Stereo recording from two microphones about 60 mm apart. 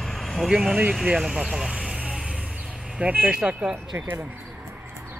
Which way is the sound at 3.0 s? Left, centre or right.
Right.